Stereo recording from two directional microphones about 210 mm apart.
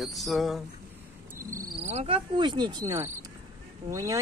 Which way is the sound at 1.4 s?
15° right (ahead or behind).